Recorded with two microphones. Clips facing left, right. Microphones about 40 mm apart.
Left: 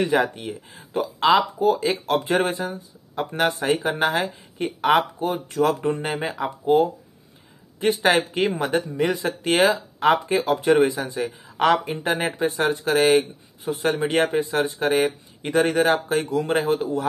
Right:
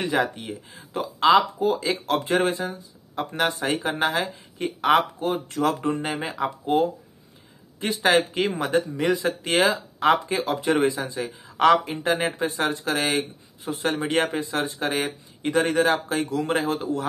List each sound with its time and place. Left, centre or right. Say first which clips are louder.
0.0 s speech: left 3 dB; left
6.4 s speech: left 4 dB; centre
7.8 s speech: left 1 dB; left
11.4 s a sound: right 2 dB; centre
12.0 s speech: left 1 dB; left
13.9 s speech: even; centre
14.2 s a man's voice: left 4 dB; left